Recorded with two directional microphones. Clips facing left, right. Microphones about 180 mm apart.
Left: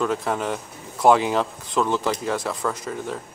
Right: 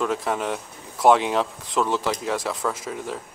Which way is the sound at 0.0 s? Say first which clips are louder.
Left 1 dB; centre (ahead or behind).